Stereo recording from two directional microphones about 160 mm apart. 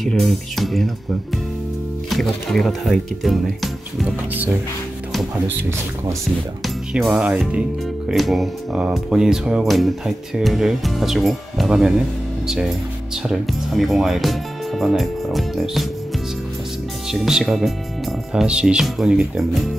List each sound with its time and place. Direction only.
0.0 s speech: centre (ahead or behind)
2.0 s speech: centre (ahead or behind)
4.3 s speech: 10° right (ahead or behind)
5.6 s speech: 15° right (ahead or behind)
6.6 s speech: centre (ahead or behind)
17.1 s speech: 5° right (ahead or behind)